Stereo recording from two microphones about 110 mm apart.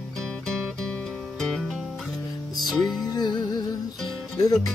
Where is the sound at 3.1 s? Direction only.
40° left (ahead or behind).